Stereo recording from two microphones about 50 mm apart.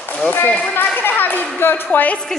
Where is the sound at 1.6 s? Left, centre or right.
Left.